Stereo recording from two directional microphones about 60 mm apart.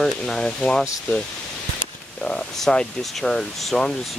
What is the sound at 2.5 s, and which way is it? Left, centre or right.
Speech, centre.